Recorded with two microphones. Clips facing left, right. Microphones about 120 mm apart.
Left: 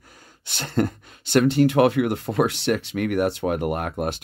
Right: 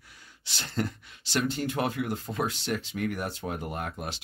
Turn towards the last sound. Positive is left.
turn(degrees=60)  # may be behind; listen again after turning